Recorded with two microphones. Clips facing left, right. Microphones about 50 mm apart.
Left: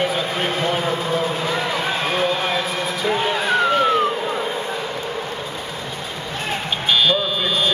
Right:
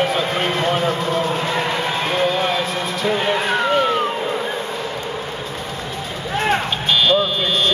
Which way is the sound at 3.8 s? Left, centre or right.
Centre.